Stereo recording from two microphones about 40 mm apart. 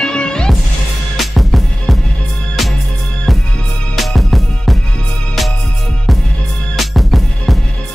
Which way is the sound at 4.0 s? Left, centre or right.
Centre.